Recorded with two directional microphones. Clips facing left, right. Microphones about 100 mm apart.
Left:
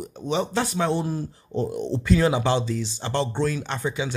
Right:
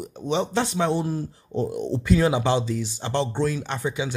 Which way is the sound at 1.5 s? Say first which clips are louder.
Even; 10° right (ahead or behind).